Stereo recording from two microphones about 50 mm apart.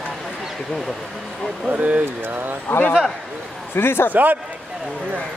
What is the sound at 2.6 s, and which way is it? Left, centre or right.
A man's voice, left.